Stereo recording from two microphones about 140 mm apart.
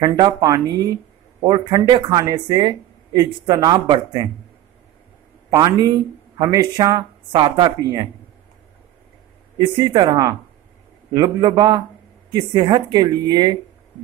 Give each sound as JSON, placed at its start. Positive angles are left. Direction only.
{"t": 0.0, "sound": "speech", "side_deg": -30}
{"t": 5.5, "sound": "speech", "side_deg": -25}
{"t": 9.6, "sound": "speech", "side_deg": -35}